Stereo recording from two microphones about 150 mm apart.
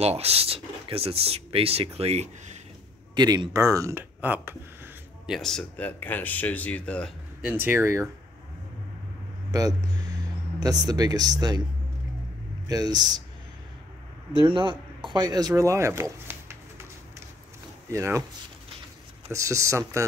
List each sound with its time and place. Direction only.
0.0 s speech: 45° right (ahead or behind)
3.2 s speech: 25° right (ahead or behind)
5.2 s speech: centre (ahead or behind)
7.4 s speech: 15° right (ahead or behind)
9.5 s speech: 25° right (ahead or behind)
12.6 s speech: 25° right (ahead or behind)
14.3 s speech: 30° right (ahead or behind); by 16.8 s 15° right (ahead or behind)
17.8 s speech: 20° right (ahead or behind)
19.3 s speech: 20° right (ahead or behind)